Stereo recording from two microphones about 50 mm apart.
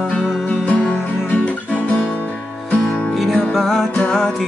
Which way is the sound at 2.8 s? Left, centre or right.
Centre.